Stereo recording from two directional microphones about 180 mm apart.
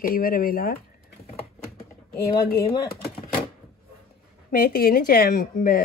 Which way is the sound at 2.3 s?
55° left (ahead or behind).